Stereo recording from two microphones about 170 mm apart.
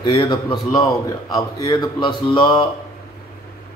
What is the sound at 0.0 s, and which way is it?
Speech, 25° left (ahead or behind).